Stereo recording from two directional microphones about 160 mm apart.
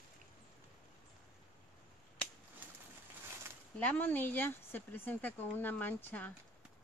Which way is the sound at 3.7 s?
10° left (ahead or behind).